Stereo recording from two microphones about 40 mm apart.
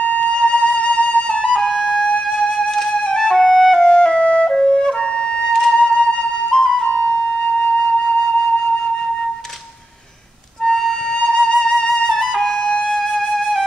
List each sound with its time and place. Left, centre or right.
0.2 s flute: left
4.6 s flute: centre
5.5 s music: centre
6.5 s flute: centre
7.1 s flute: left
11.1 s flute: centre